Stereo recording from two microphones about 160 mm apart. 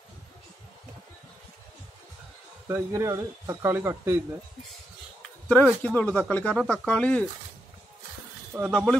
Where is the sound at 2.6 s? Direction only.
20° right (ahead or behind).